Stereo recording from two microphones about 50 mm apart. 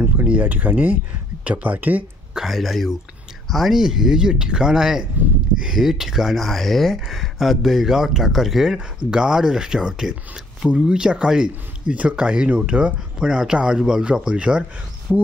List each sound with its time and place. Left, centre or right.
0.3 s speech: right
2.3 s speech: centre
8.7 s speech: centre
14.3 s speech: right
15.1 s speech: centre